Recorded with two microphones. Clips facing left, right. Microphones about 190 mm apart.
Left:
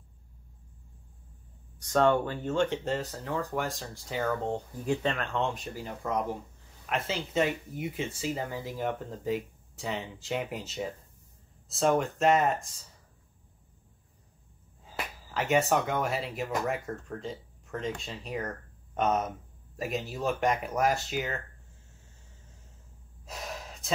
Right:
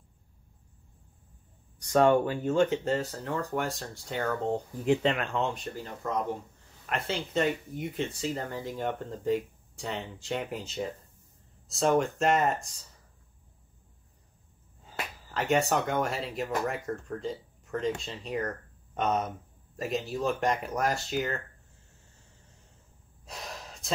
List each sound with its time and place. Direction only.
1.9 s speech: 10° right (ahead or behind)
4.8 s speech: 15° right (ahead or behind)
6.0 s speech: 10° left (ahead or behind)
15.3 s speech: 5° left (ahead or behind)
23.2 s gasp: centre (ahead or behind)